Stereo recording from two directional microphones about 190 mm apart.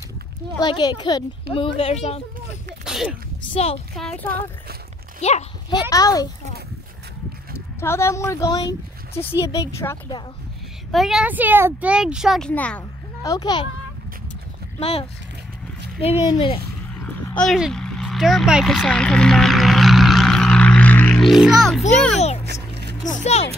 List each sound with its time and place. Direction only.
0.6 s speech: 20° left (ahead or behind)
2.8 s a sound: 5° right (ahead or behind)
3.5 s speech: 30° left (ahead or behind)
3.9 s speech: centre (ahead or behind)
5.2 s speech: 35° left (ahead or behind)
5.7 s speech: 20° left (ahead or behind)
7.5 s a woman's voice: 15° left (ahead or behind)
10.9 s speech: centre (ahead or behind)
13.3 s speech: 20° left (ahead or behind)
14.8 s speech: 30° left (ahead or behind)
17.0 s a sound: 5° left (ahead or behind)
22.1 s a child's voice: 35° left (ahead or behind)
22.5 s a sound: 60° right (ahead or behind)
23.0 s speech: 40° left (ahead or behind)